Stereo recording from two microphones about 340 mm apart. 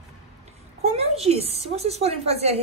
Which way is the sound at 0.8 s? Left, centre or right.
Centre.